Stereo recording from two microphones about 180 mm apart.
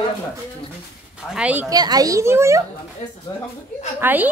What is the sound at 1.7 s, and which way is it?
Speech, 20° right (ahead or behind).